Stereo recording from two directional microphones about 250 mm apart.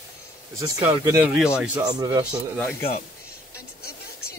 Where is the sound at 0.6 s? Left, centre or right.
Centre.